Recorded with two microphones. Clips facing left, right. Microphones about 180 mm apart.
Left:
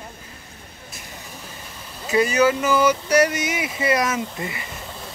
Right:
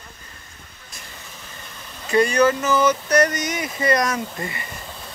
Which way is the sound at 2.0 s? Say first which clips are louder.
Right 1 dB; 5° left (ahead or behind).